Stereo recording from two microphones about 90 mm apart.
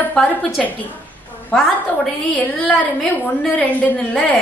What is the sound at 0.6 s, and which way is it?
Speech, 5° left (ahead or behind).